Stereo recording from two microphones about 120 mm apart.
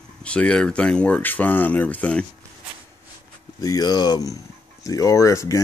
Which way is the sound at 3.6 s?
30° left (ahead or behind).